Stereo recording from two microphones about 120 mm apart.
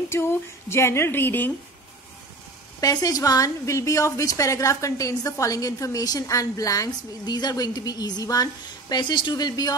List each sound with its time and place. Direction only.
0.1 s a woman's voice: 20° left (ahead or behind)
2.8 s a woman's voice: 30° left (ahead or behind)